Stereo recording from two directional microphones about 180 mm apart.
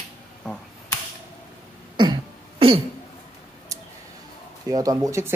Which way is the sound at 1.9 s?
25° right (ahead or behind).